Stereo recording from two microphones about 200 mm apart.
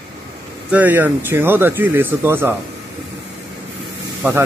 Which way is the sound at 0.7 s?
10° right (ahead or behind).